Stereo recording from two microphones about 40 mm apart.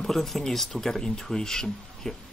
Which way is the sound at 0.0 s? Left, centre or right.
Centre.